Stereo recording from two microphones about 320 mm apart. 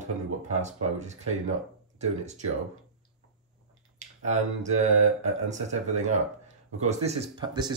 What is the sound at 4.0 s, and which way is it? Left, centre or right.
Speech, right.